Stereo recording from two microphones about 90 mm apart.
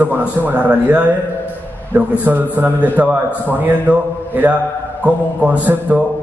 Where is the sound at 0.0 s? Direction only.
20° right (ahead or behind).